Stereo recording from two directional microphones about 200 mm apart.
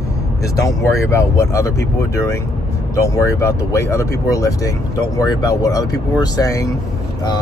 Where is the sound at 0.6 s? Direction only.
15° left (ahead or behind).